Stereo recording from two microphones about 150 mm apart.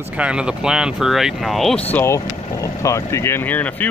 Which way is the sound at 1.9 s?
15° left (ahead or behind).